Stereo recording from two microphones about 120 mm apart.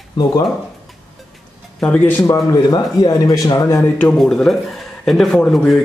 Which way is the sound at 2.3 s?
30° left (ahead or behind).